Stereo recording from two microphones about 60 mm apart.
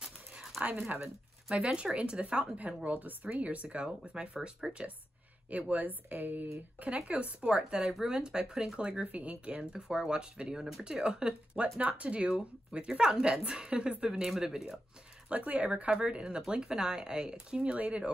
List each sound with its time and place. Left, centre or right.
0.6 s speech: right
5.5 s speech: right
6.8 s speech: centre
15.2 s speech: right